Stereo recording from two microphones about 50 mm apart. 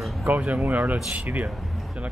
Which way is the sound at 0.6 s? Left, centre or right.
Right.